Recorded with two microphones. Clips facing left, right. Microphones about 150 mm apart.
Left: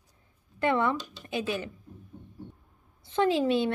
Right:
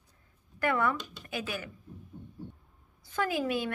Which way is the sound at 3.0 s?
25° left (ahead or behind).